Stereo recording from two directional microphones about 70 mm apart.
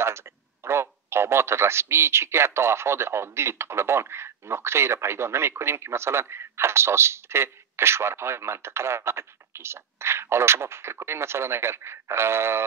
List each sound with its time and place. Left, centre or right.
0.7 s a man's voice: right